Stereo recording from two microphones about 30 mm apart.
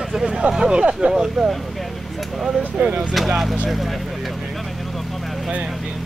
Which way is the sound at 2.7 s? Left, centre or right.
Right.